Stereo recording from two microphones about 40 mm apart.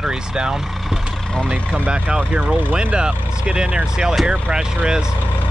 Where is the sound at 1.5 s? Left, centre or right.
Right.